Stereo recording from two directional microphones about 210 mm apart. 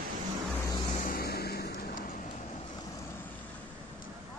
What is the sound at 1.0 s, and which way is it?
Music, 45° left (ahead or behind).